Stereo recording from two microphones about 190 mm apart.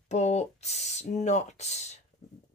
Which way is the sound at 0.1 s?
35° left (ahead or behind).